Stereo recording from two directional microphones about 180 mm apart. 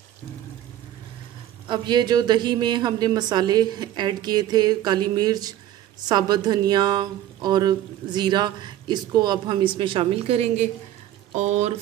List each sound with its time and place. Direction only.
1.7 s a woman's voice: 25° right (ahead or behind)